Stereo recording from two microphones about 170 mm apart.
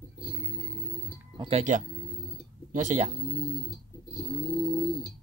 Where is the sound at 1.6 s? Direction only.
45° right (ahead or behind).